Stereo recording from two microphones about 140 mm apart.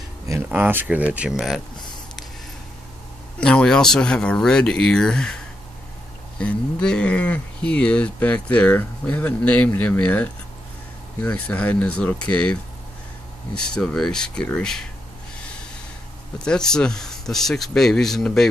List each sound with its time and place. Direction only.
0.5 s speech: 10° right (ahead or behind)
3.3 s speech: 5° left (ahead or behind)
13.7 s speech: 5° left (ahead or behind)
16.4 s speech: 5° left (ahead or behind)